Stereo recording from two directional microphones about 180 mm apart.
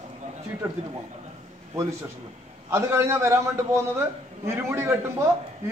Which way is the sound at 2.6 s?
15° right (ahead or behind).